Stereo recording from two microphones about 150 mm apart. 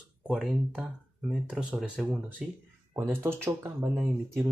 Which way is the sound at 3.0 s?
15° right (ahead or behind).